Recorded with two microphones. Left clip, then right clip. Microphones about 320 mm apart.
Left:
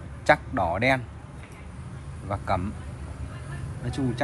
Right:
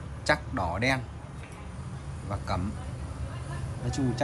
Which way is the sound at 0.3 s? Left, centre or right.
Centre.